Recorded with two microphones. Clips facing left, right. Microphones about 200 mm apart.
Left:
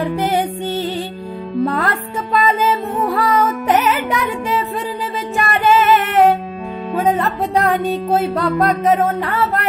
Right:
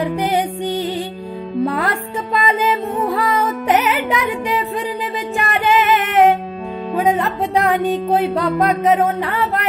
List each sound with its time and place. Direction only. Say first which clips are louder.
0.0 s music: even; 15° right (ahead or behind)